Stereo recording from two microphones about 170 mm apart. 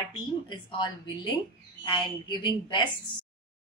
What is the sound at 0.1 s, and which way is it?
Speech, 30° left (ahead or behind).